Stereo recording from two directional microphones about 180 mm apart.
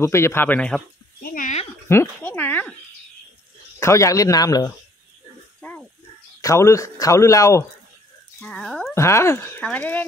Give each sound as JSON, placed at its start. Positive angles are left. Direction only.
{"t": 0.0, "sound": "speech", "side_deg": 15}
{"t": 1.2, "sound": "a sound", "side_deg": 50}
{"t": 1.9, "sound": "speech", "side_deg": 10}
{"t": 3.8, "sound": "speech", "side_deg": 15}
{"t": 5.6, "sound": "a sound", "side_deg": 10}
{"t": 6.4, "sound": "speech", "side_deg": 15}
{"t": 8.4, "sound": "speech", "side_deg": 0}
{"t": 8.9, "sound": "speech", "side_deg": 15}